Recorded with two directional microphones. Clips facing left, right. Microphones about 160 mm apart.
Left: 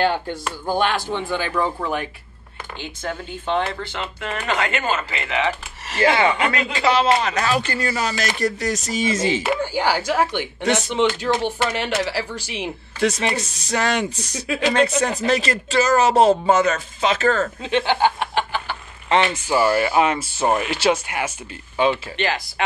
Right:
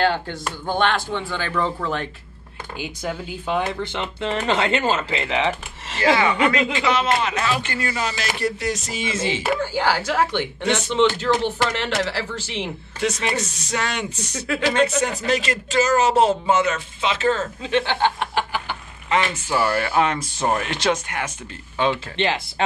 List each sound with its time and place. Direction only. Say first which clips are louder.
0.0 s speech: left 1 dB; 10° left (ahead or behind)
2.8 s speech: right 1 dB; 10° right (ahead or behind)
3.8 s speech: right 3 dB; 20° right (ahead or behind)
6.7 s speech: left 3 dB; 35° left (ahead or behind)
9.6 s speech: left 1 dB; 15° left (ahead or behind)
13.0 s speech: left 2 dB; 35° left (ahead or behind)
17.6 s speech: left 1 dB; 15° left (ahead or behind)
18.2 s a sound: left 1 dB; 5° right (ahead or behind)
19.1 s speech: left 3 dB; 30° left (ahead or behind)
19.4 s speech: left 3 dB; 5° left (ahead or behind)
22.1 s speech: right 1 dB; 25° right (ahead or behind)